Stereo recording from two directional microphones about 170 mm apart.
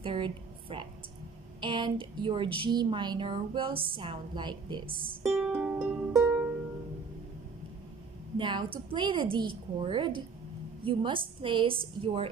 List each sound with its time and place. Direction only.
0.0 s a sound: 30° right (ahead or behind)
1.6 s a woman's voice: 30° right (ahead or behind)
5.2 s music: 5° right (ahead or behind)
8.4 s a woman's voice: 30° right (ahead or behind)